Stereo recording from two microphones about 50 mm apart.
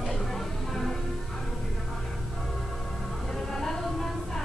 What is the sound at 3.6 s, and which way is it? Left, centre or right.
Music, centre.